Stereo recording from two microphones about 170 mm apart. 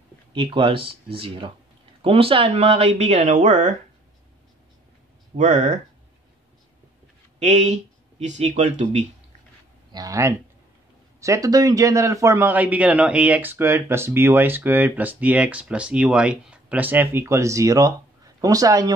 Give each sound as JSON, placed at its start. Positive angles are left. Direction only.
{"t": 0.3, "sound": "speech", "side_deg": -30}
{"t": 5.4, "sound": "speech", "side_deg": -45}
{"t": 7.3, "sound": "speech", "side_deg": -40}
{"t": 9.9, "sound": "a man's voice", "side_deg": -20}